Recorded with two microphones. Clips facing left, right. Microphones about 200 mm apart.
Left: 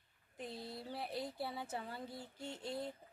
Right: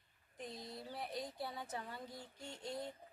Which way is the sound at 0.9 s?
30° left (ahead or behind).